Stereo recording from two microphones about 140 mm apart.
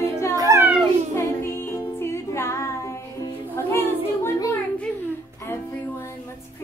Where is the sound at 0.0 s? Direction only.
20° left (ahead or behind).